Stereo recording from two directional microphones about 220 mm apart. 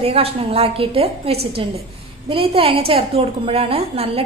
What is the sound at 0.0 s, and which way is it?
A woman's voice, 25° right (ahead or behind).